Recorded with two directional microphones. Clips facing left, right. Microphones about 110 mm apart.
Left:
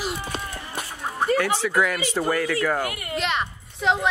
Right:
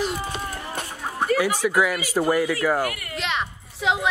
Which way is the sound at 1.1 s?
10° right (ahead or behind).